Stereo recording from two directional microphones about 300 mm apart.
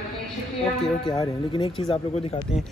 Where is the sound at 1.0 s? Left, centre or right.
Centre.